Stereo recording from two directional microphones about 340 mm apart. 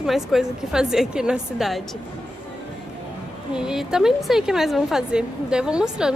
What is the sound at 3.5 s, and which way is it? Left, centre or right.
Speech, centre.